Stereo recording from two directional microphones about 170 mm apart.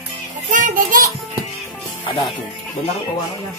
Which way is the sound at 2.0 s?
30° left (ahead or behind).